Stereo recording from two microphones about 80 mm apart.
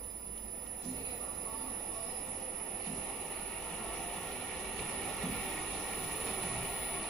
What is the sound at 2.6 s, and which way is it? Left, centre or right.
Vehicle, centre.